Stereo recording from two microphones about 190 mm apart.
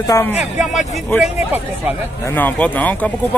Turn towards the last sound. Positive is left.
turn(degrees=10)  # may be behind; listen again after turning